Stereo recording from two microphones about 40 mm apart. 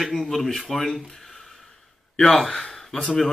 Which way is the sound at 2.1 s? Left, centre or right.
Centre.